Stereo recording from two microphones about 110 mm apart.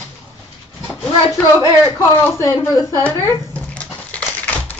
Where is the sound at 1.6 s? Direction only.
35° left (ahead or behind).